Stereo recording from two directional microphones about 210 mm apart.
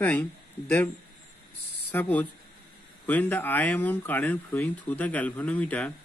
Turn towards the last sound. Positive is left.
turn(degrees=5)  # may be behind; listen again after turning